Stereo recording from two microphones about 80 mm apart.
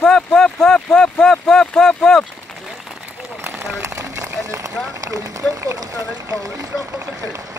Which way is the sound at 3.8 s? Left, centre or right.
Right.